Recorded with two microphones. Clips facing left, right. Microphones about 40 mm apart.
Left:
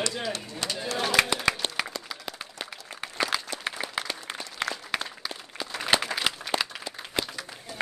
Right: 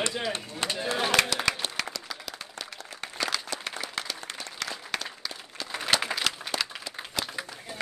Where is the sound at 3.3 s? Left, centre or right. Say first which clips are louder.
Left 2 dB; centre.